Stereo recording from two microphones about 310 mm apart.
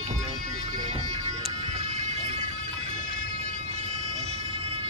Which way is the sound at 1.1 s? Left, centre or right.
Centre.